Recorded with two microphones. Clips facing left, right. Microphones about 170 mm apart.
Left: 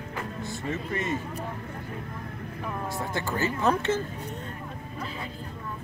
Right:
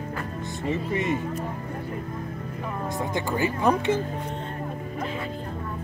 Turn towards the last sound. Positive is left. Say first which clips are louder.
# right 3 dB
turn(degrees=-15)  # may be behind; listen again after turning